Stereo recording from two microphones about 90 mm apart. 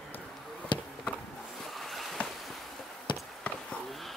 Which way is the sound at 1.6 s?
Centre (ahead or behind).